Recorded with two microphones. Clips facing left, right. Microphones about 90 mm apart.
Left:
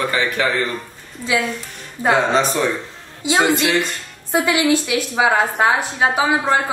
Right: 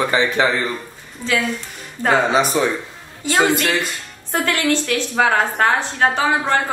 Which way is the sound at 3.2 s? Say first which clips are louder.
Even; 5° left (ahead or behind).